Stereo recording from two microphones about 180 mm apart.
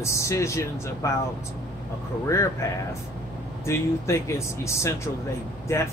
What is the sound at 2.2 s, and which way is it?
A man's voice, 15° left (ahead or behind).